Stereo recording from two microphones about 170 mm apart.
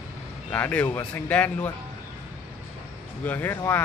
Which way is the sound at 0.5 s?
10° left (ahead or behind).